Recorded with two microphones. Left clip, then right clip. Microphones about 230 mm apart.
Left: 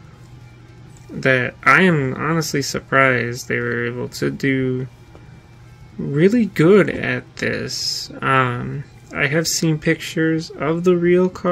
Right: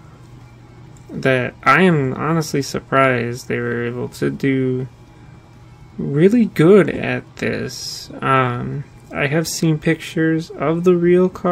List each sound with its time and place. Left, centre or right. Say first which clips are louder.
1.2 s speech: even; centre
6.1 s speech: right 2 dB; centre